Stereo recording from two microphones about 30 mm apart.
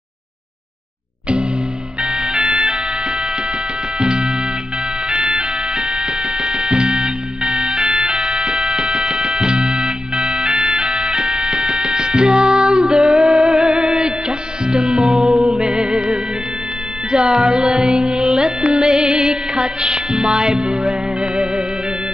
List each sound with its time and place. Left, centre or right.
2.1 s music: right
13.6 s music: right
15.2 s music: centre
15.5 s music: right
17.1 s music: right